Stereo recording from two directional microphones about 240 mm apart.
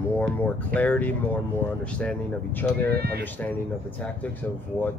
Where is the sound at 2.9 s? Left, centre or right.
Right.